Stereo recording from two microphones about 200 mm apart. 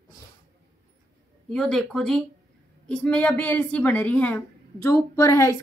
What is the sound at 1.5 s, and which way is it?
Speech, centre (ahead or behind).